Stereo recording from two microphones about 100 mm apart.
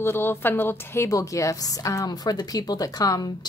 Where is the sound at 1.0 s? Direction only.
35° left (ahead or behind).